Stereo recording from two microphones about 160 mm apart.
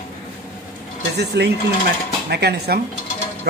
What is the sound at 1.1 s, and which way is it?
Speech, 90° right.